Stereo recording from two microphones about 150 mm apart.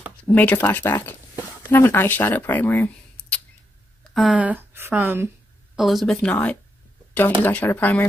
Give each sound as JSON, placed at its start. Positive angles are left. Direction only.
{"t": 0.2, "sound": "speech", "side_deg": 10}
{"t": 4.0, "sound": "speech", "side_deg": 0}
{"t": 5.8, "sound": "speech", "side_deg": 0}